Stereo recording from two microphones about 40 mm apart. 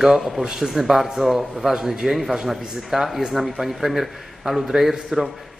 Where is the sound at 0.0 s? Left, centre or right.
Centre.